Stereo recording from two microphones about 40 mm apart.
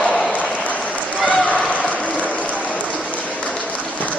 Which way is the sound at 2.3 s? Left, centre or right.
Left.